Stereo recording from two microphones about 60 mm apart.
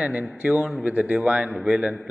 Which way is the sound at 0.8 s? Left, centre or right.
Right.